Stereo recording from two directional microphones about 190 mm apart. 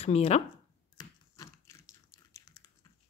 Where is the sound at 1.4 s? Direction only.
20° left (ahead or behind).